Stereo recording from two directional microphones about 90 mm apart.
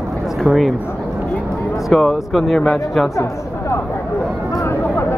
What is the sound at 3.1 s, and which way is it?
Speech, 30° left (ahead or behind).